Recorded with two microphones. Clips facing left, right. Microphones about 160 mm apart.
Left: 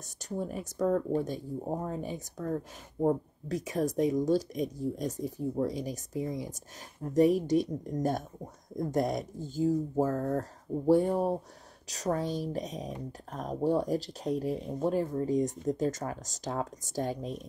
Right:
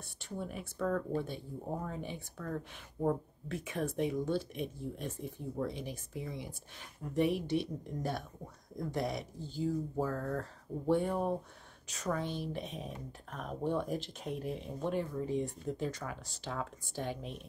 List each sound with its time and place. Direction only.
0.0 s speech: 40° left (ahead or behind)